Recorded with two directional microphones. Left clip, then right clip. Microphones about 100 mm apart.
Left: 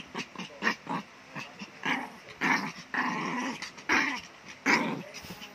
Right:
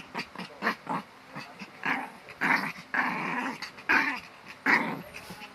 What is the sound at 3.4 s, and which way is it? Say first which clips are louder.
Dog: right 2 dB; 50° left (ahead or behind).